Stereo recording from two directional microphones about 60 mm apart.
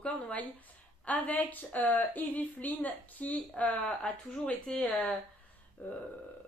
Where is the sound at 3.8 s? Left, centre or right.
Centre.